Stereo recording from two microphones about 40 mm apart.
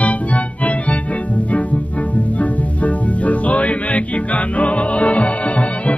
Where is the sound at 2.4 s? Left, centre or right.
Left.